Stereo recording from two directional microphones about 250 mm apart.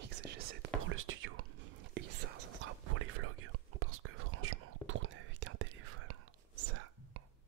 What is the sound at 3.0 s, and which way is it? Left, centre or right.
Whispering, right.